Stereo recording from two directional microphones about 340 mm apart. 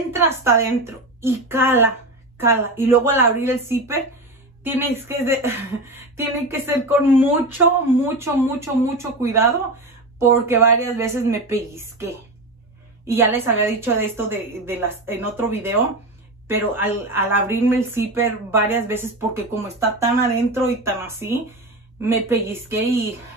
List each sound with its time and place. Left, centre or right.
0.1 s speech: centre